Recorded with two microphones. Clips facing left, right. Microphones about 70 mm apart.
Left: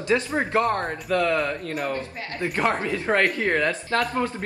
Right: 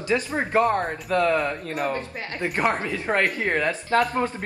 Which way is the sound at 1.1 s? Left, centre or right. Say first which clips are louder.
Right 1 dB; right.